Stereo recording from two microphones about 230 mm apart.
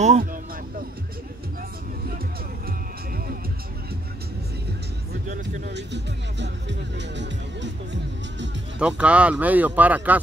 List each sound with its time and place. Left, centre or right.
0.0 s music: right
5.6 s speech: right
8.7 s speech: centre